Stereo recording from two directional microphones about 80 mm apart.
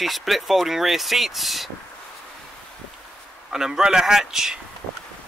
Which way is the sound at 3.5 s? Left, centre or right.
Centre.